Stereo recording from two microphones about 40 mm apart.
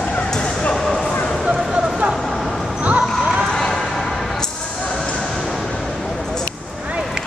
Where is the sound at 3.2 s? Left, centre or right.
Right.